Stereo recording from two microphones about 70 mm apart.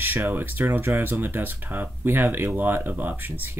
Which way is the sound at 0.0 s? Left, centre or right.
Right.